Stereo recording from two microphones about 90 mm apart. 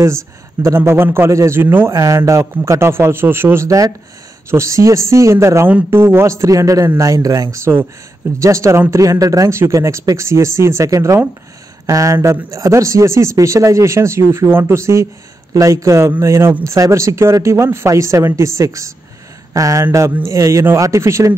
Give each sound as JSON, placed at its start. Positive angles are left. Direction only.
{"t": 0.7, "sound": "a man's voice", "side_deg": -25}
{"t": 1.9, "sound": "a man's voice", "side_deg": -35}
{"t": 5.7, "sound": "speech", "side_deg": -15}
{"t": 5.9, "sound": "speech", "side_deg": -30}